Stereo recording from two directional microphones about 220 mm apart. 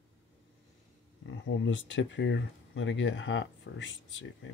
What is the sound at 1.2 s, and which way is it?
Speech, 60° left (ahead or behind).